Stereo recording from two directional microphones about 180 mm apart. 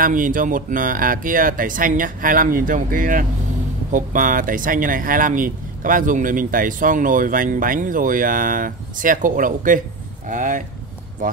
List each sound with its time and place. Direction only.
0.0 s speech: 50° right (ahead or behind)